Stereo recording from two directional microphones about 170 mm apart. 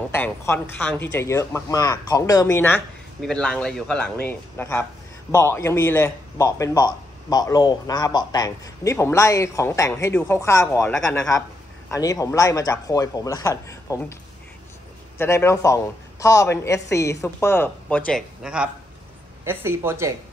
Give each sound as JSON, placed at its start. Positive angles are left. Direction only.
{"t": 0.1, "sound": "a man's voice", "side_deg": 15}
{"t": 3.2, "sound": "a man's voice", "side_deg": 5}
{"t": 15.1, "sound": "a man's voice", "side_deg": 15}
{"t": 18.4, "sound": "a man's voice", "side_deg": -5}